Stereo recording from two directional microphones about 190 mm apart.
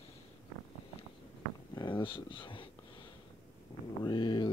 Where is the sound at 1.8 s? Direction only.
25° left (ahead or behind).